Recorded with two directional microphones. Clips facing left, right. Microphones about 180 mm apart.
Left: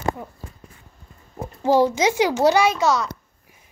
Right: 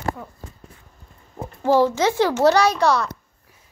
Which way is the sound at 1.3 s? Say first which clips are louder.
Even; 15° left (ahead or behind).